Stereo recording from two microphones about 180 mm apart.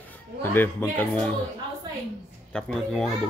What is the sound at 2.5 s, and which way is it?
Speech, 5° left (ahead or behind).